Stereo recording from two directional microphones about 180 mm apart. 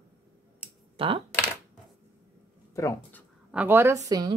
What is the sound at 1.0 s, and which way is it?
Speech, 30° right (ahead or behind).